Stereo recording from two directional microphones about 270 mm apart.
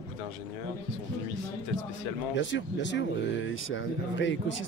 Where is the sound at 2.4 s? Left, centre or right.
Left.